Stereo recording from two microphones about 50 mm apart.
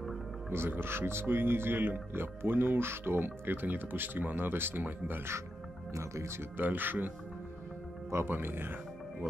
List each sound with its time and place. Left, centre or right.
0.5 s speech: right
5.9 s speech: right
6.6 s speech: right
8.3 s speech: right